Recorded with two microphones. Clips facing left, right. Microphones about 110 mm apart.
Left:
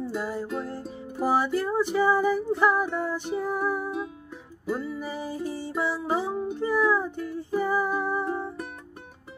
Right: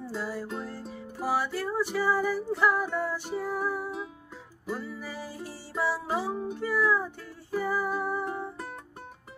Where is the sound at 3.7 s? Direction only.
Centre (ahead or behind).